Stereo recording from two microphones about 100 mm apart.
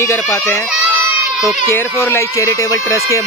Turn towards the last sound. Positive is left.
turn(degrees=30)  # may be behind; listen again after turning